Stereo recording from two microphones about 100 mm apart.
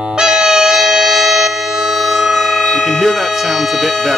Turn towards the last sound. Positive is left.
turn(degrees=0)  # may be behind; listen again after turning